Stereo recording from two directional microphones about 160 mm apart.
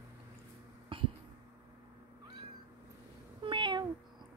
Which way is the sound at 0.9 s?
35° right (ahead or behind).